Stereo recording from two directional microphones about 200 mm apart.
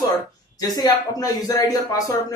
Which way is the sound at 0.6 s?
20° left (ahead or behind).